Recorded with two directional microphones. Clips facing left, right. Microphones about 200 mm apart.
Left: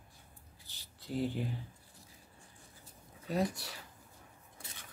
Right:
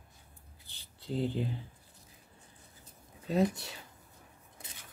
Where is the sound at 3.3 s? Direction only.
25° right (ahead or behind).